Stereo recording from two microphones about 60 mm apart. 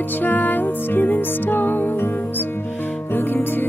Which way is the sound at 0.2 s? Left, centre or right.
Left.